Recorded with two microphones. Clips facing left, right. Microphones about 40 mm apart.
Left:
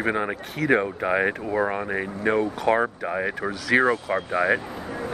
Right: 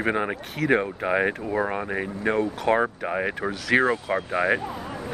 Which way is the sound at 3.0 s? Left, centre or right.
Centre.